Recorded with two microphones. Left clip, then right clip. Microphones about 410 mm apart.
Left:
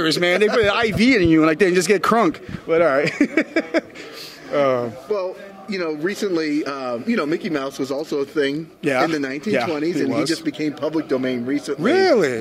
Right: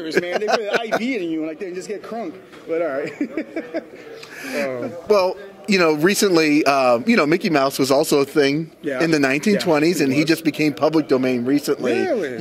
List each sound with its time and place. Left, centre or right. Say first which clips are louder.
0.0 s speech: left 4 dB; left
2.7 s speech: left 6 dB; left
5.1 s speech: right 9 dB; right
12.0 s speech: left 6 dB; left